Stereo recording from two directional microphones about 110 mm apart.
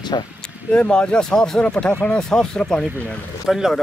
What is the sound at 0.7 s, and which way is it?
Speech, 10° left (ahead or behind).